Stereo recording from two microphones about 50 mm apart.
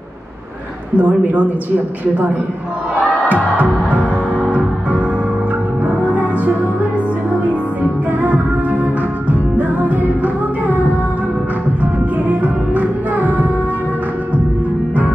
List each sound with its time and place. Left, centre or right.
0.9 s a man's voice: right
3.3 s music: right
6.0 s music: right